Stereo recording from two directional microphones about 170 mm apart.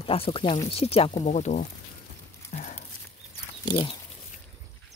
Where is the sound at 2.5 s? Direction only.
45° left (ahead or behind).